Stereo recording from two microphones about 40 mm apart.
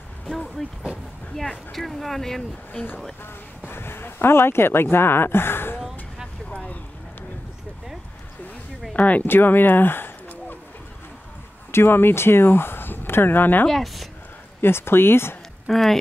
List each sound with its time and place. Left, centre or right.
0.6 s speech: centre
3.6 s speech: left
6.5 s a sound: left
8.9 s speech: left
9.2 s speech: left
11.7 s speech: left
13.7 s speech: centre
14.6 s speech: left
15.6 s speech: centre